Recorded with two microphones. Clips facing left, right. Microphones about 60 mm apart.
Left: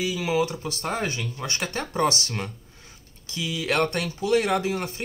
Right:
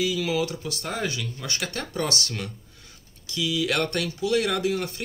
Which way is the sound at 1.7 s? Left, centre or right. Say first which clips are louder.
Left 6 dB; left.